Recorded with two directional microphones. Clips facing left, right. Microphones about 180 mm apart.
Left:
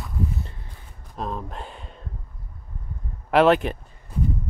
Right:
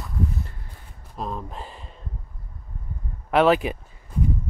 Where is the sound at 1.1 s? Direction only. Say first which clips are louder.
Left 1 dB; centre (ahead or behind).